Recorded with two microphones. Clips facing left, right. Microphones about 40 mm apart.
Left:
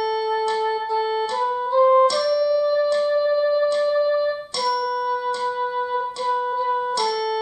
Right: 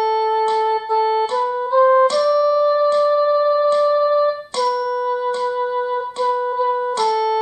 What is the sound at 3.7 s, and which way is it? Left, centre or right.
Music, right.